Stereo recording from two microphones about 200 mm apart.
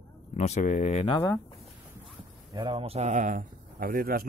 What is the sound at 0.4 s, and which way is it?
Speech, 35° left (ahead or behind).